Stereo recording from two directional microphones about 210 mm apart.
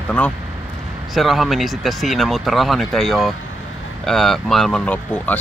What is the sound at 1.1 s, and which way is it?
Speech, centre (ahead or behind).